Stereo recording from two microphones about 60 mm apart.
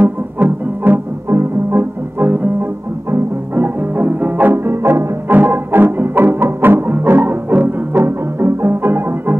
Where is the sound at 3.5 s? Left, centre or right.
Right.